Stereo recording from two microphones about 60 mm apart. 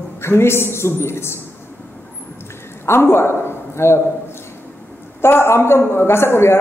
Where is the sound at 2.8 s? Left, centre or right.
Left.